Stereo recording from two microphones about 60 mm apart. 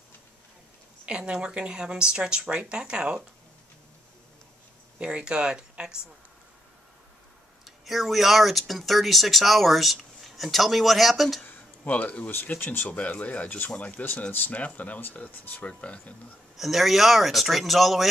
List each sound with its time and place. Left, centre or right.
1.0 s speech: centre
4.9 s speech: centre
7.6 s speech: centre
11.4 s a sound: left
12.3 s speech: left
12.8 s speech: left
16.5 s speech: centre